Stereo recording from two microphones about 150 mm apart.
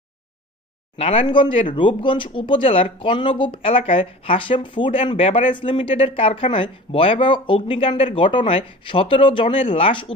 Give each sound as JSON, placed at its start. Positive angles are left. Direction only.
{"t": 0.9, "sound": "speech", "side_deg": 40}